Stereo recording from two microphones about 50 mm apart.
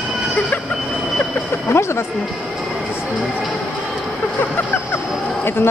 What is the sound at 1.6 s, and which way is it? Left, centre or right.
Speech, left.